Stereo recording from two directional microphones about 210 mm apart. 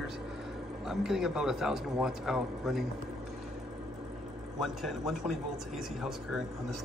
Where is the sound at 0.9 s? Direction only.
Centre (ahead or behind).